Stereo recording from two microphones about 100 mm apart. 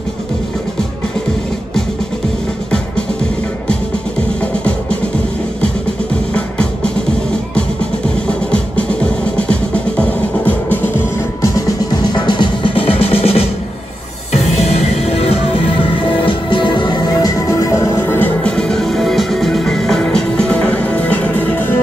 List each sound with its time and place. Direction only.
8.3 s music: 10° left (ahead or behind)
11.4 s music: 35° left (ahead or behind)
17.5 s music: 30° left (ahead or behind)
18.4 s music: 5° left (ahead or behind)